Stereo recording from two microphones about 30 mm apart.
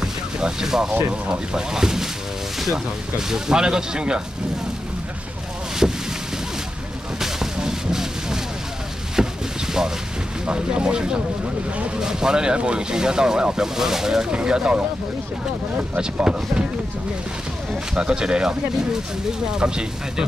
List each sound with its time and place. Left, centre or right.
0.0 s music: centre
1.3 s speech: right
3.2 s speech: right
5.8 s speech: right
7.2 s a sound: centre
9.8 s speech: right
12.5 s speech: right
12.9 s speech: right
13.7 s speech: centre
14.3 s speech: right
17.9 s speech: right
19.6 s speech: right